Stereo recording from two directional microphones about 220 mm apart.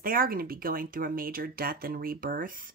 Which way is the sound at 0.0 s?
40° right (ahead or behind).